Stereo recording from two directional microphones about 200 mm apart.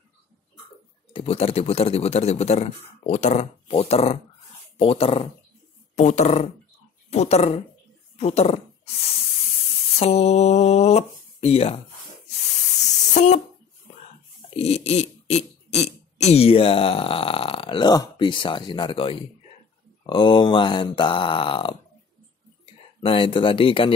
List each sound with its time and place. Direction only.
1.1 s speech: 30° left (ahead or behind)
9.9 s speech: 30° left (ahead or behind)
13.1 s speech: 35° left (ahead or behind)
14.6 s speech: 30° left (ahead or behind)
23.0 s speech: 25° left (ahead or behind)